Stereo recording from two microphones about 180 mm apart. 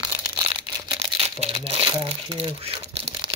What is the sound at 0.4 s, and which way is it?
Crumpling, 30° right (ahead or behind).